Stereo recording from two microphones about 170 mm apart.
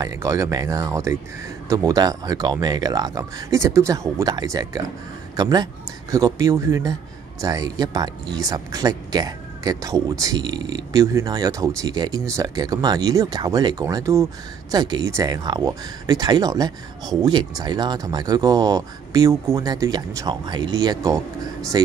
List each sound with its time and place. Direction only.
0.0 s speech: 20° right (ahead or behind)